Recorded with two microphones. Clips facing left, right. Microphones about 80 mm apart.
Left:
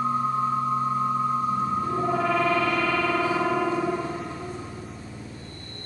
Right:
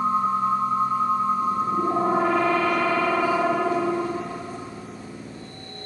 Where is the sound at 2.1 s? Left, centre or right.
Right.